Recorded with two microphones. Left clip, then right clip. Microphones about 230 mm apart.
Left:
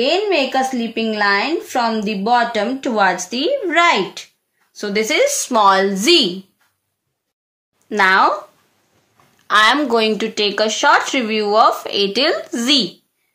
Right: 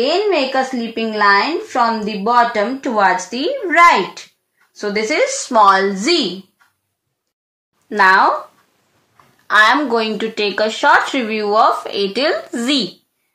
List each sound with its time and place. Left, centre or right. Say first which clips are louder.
0.0 s a woman's voice: right 1 dB; left
7.9 s speech: right 2 dB; left
9.5 s speech: right 1 dB; left